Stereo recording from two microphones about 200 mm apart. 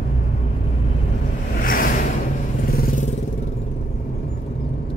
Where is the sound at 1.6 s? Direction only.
45° left (ahead or behind).